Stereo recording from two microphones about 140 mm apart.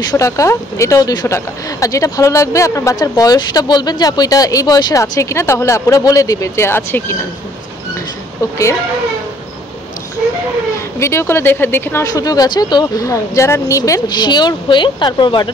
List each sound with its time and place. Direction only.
0.1 s a woman's voice: 20° left (ahead or behind)
11.0 s a woman's voice: 20° left (ahead or behind)